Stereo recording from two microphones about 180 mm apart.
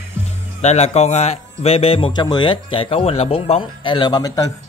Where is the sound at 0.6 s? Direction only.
35° left (ahead or behind).